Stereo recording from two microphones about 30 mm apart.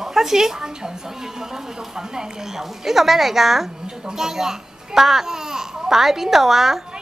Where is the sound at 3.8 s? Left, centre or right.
Right.